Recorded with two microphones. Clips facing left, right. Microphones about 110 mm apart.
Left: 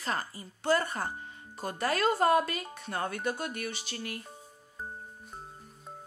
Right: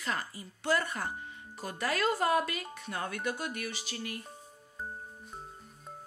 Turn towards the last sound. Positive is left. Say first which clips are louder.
# left 1 dB
turn(degrees=35)  # may be behind; listen again after turning